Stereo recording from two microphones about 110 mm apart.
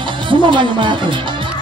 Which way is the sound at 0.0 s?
50° right (ahead or behind).